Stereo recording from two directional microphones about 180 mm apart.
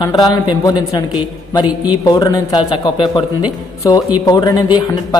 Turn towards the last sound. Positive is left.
turn(degrees=20)  # may be behind; listen again after turning